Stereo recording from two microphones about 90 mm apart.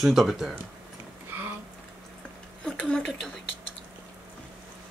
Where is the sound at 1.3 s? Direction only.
25° right (ahead or behind).